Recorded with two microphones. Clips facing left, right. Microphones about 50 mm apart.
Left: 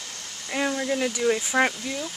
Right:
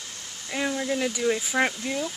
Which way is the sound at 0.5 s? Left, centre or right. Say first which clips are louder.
Left 2 dB; centre.